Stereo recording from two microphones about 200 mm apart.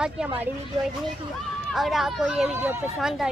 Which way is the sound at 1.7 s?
Centre (ahead or behind).